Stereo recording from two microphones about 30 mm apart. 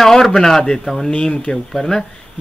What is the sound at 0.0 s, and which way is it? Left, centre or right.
Speech, centre.